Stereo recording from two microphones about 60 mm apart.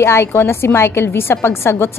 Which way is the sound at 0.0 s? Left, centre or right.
Left.